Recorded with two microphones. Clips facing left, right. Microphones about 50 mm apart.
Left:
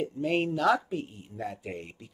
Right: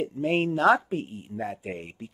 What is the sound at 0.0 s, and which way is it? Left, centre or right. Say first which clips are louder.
Speech: right 3 dB; right.